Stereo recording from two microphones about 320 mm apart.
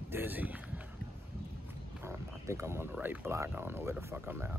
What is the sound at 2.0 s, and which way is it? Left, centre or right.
Speech, centre.